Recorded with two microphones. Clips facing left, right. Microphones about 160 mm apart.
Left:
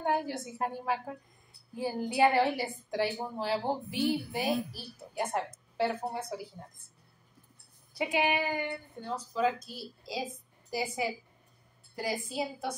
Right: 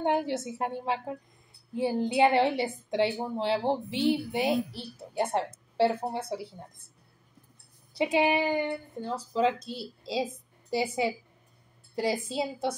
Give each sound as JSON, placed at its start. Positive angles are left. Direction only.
{"t": 0.0, "sound": "a woman's voice", "side_deg": -20}
{"t": 7.9, "sound": "a woman's voice", "side_deg": -25}